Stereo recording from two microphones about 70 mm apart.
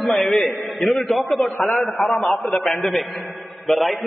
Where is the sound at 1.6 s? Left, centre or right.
Left.